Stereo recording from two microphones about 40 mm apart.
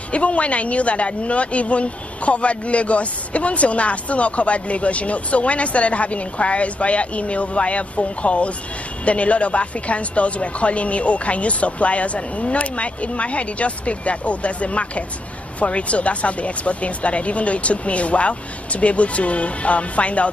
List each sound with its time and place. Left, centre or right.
0.1 s a woman's voice: left